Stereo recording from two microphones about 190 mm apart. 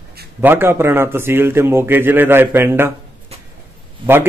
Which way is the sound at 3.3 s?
30° right (ahead or behind).